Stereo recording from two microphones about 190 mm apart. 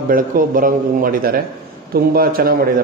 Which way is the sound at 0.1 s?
45° right (ahead or behind).